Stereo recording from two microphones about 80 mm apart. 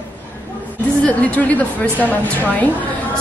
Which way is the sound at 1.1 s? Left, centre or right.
Centre.